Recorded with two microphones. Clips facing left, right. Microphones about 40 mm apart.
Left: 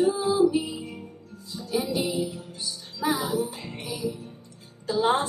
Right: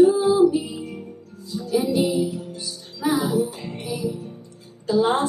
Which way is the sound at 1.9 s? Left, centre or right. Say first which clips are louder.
Right 6 dB; right.